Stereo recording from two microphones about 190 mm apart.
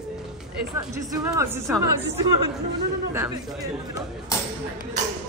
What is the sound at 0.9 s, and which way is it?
Speech, 15° right (ahead or behind).